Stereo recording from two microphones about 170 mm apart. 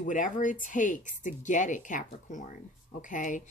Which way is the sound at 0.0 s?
50° left (ahead or behind).